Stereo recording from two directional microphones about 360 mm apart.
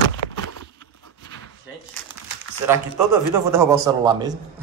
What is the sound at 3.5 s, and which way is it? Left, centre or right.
Speech, centre.